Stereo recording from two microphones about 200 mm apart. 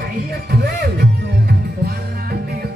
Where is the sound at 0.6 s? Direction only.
55° right (ahead or behind).